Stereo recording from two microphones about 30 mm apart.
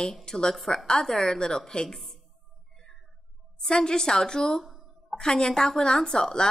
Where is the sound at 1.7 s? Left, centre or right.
Left.